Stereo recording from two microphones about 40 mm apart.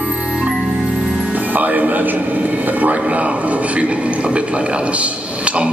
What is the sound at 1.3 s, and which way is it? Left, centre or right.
Music, right.